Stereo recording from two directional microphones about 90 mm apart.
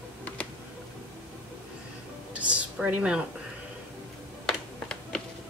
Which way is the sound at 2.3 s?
15° right (ahead or behind).